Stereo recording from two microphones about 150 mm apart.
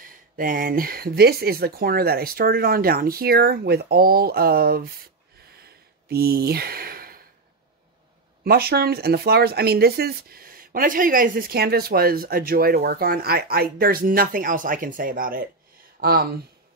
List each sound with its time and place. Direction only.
0.0 s speech: 70° right (ahead or behind); by 4.8 s 90° right
5.6 s a sound: 90° right
8.5 s speech: 90° right; by 15.5 s 70° right (ahead or behind)
16.0 s speech: 90° right